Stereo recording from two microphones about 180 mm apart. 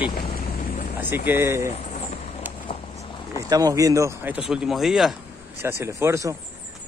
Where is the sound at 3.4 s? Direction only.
20° right (ahead or behind).